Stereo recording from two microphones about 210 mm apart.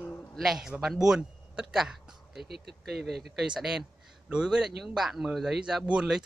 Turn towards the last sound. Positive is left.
turn(degrees=-5)  # may be behind; listen again after turning